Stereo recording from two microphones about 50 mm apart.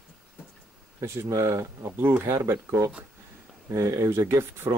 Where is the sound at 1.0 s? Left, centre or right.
Right.